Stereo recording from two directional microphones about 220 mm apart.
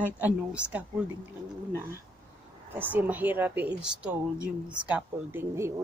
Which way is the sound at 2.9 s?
5° right (ahead or behind).